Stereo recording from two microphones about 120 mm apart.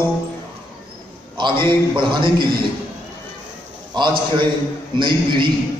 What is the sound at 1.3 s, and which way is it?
A man's voice, 40° right (ahead or behind).